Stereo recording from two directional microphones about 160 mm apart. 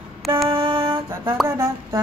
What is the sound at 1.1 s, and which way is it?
Speech, 15° right (ahead or behind).